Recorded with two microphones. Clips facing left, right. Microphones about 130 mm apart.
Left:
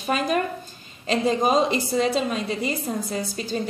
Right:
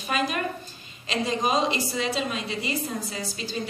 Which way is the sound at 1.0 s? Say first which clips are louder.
Left 5 dB; 45° left (ahead or behind).